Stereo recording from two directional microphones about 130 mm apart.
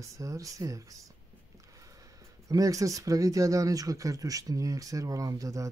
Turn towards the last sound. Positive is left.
turn(degrees=-25)  # may be behind; listen again after turning